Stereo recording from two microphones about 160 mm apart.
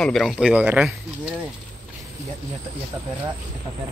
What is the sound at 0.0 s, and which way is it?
Speech, centre (ahead or behind).